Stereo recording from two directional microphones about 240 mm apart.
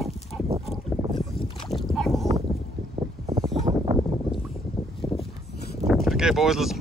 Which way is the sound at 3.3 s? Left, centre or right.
Right.